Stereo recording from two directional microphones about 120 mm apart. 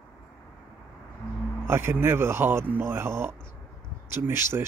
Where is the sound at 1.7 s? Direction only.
20° right (ahead or behind).